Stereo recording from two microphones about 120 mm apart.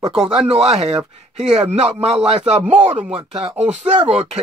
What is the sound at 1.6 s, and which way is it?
Speech, 60° right (ahead or behind).